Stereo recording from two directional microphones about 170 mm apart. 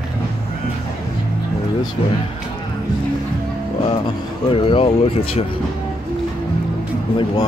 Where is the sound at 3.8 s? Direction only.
30° left (ahead or behind).